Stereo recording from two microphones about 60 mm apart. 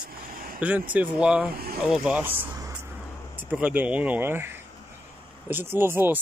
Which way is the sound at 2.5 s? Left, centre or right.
Right.